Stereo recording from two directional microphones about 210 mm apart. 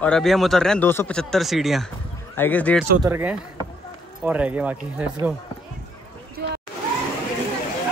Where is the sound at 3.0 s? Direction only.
10° right (ahead or behind).